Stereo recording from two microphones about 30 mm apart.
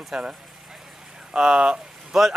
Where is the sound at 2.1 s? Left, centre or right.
Centre.